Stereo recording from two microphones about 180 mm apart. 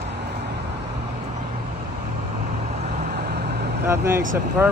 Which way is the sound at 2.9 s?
60° right (ahead or behind).